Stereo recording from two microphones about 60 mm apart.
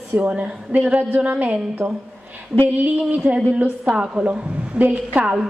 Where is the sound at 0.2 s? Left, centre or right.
Centre.